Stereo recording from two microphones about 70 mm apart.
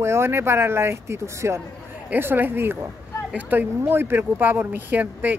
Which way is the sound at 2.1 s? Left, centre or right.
Right.